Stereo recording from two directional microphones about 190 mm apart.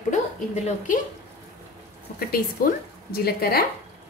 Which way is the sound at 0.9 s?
45° left (ahead or behind).